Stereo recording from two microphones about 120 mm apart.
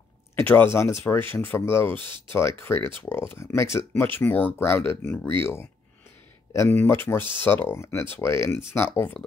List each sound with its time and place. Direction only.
0.4 s speech: 15° left (ahead or behind)